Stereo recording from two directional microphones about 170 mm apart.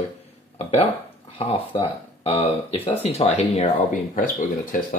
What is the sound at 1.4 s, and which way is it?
Speech, 35° left (ahead or behind).